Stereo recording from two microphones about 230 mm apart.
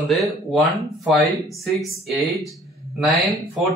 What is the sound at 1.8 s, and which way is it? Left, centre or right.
A man's voice, centre.